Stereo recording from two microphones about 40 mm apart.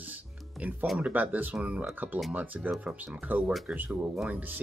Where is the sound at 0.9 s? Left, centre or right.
Right.